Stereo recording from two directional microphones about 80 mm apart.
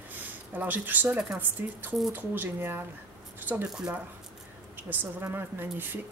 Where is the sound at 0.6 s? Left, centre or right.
Right.